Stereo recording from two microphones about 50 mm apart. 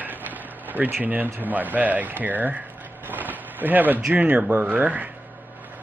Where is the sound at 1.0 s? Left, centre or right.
Right.